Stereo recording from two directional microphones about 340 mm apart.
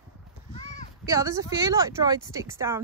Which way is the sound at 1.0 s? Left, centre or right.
Centre.